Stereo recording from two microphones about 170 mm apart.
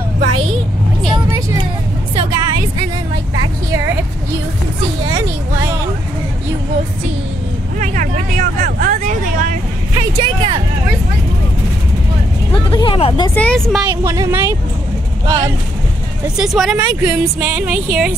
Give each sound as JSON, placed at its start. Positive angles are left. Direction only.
{"t": 0.2, "sound": "a sound", "side_deg": -35}
{"t": 1.1, "sound": "music", "side_deg": -20}
{"t": 5.1, "sound": "a sound", "side_deg": -15}
{"t": 7.8, "sound": "vehicle", "side_deg": -50}
{"t": 10.2, "sound": "a sound", "side_deg": -35}
{"t": 12.5, "sound": "vehicle", "side_deg": 30}
{"t": 13.3, "sound": "speech", "side_deg": 5}
{"t": 14.0, "sound": "music", "side_deg": -20}
{"t": 15.2, "sound": "speech", "side_deg": -20}
{"t": 16.3, "sound": "speech", "side_deg": 0}
{"t": 17.0, "sound": "music", "side_deg": -15}